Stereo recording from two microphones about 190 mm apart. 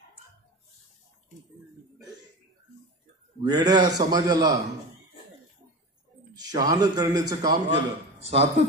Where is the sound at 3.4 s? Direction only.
20° right (ahead or behind).